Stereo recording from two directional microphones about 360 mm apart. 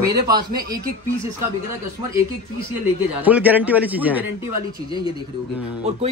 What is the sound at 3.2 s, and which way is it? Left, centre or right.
A man's voice, centre.